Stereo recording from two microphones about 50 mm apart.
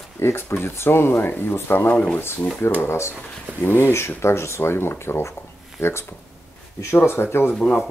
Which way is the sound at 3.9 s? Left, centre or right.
Left.